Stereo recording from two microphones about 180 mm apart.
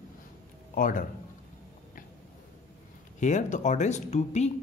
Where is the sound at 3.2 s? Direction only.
45° left (ahead or behind).